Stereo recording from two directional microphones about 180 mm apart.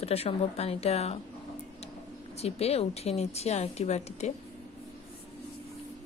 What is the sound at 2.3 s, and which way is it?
Speech, 35° left (ahead or behind).